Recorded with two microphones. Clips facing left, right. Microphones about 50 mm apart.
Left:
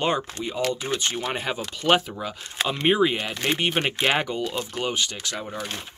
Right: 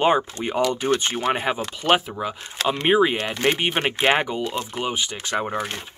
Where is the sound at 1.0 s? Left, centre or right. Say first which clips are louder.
Right 5 dB; right.